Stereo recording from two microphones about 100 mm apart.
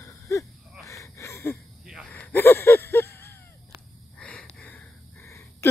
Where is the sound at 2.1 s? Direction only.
15° left (ahead or behind).